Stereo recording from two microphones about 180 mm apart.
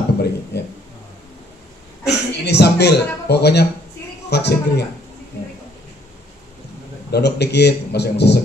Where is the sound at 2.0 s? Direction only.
70° left (ahead or behind).